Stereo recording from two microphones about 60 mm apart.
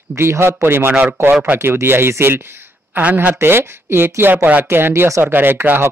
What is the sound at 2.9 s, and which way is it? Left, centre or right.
Speech, right.